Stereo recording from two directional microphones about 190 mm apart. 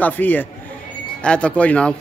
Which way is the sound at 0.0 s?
10° left (ahead or behind).